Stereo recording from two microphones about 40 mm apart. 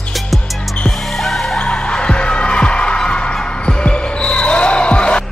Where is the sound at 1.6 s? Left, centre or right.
Left.